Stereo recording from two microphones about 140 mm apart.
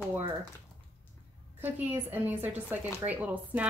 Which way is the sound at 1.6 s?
15° right (ahead or behind).